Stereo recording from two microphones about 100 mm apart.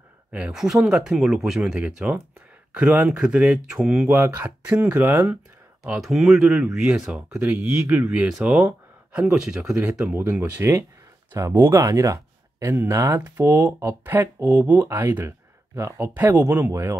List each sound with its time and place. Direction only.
0.3 s speech: 5° right (ahead or behind)
4.1 s speech: 20° right (ahead or behind)
5.9 s speech: centre (ahead or behind)
10.1 s speech: 20° right (ahead or behind)
11.8 s speech: 35° right (ahead or behind)